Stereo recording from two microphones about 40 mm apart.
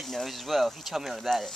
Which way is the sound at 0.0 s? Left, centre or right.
Centre.